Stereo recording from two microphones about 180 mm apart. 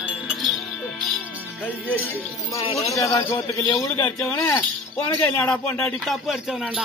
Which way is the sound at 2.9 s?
15° left (ahead or behind).